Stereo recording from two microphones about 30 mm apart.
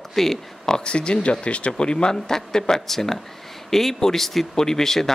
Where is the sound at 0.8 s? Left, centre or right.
Left.